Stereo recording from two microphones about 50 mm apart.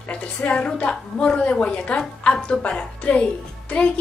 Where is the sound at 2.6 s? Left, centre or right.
Left.